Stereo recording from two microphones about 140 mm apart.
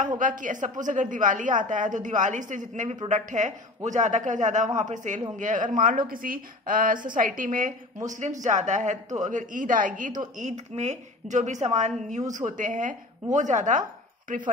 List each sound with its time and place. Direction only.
0.2 s a woman's voice: 70° right (ahead or behind)
8.1 s a woman's voice: 60° right (ahead or behind)
10.3 s a woman's voice: 60° right (ahead or behind)
12.4 s a woman's voice: 70° right (ahead or behind)